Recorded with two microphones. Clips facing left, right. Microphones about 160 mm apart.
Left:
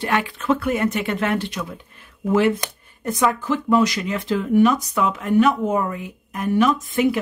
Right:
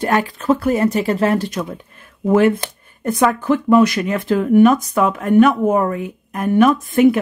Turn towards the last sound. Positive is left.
turn(degrees=-55)  # may be behind; listen again after turning